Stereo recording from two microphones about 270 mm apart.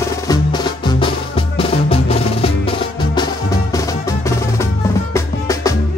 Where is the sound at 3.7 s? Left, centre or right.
Centre.